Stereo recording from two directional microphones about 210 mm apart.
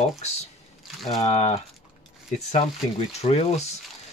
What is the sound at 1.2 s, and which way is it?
Speech, 30° left (ahead or behind).